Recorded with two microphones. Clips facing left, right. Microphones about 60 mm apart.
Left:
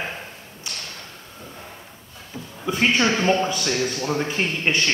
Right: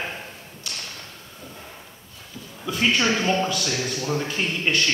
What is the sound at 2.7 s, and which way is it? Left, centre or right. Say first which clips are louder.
Speech: left 2 dB; left.